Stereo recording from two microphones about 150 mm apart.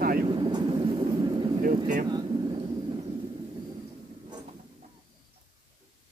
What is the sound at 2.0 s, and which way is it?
Vehicle, 30° right (ahead or behind).